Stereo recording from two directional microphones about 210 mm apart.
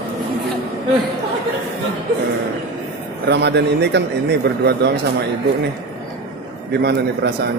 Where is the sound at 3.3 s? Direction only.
55° right (ahead or behind).